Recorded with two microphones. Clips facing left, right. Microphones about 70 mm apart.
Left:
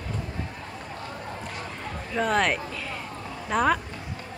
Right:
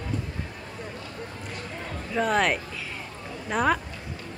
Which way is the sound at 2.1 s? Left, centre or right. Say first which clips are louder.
Even; centre.